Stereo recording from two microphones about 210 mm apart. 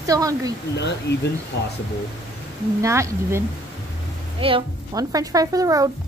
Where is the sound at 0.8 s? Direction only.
55° left (ahead or behind).